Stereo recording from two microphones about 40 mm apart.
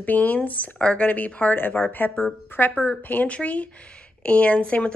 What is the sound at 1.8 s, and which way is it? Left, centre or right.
Speech, left.